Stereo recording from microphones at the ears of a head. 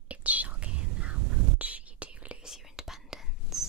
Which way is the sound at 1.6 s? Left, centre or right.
Centre.